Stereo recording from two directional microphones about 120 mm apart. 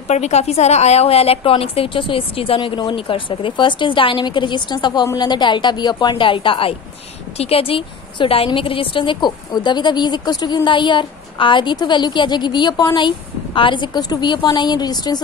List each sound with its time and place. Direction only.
0.1 s a woman's voice: 65° left (ahead or behind); by 15.2 s 35° left (ahead or behind)